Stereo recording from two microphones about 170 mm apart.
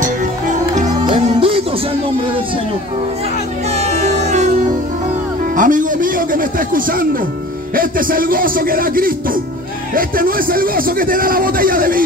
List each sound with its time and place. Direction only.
0.8 s music: 30° right (ahead or behind)
4.0 s music: 40° right (ahead or behind)
5.6 s a man's voice: 50° right (ahead or behind)